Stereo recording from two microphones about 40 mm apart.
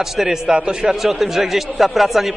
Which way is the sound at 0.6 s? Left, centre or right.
Right.